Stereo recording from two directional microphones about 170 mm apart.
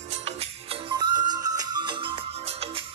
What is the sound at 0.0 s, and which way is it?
Music, 40° right (ahead or behind).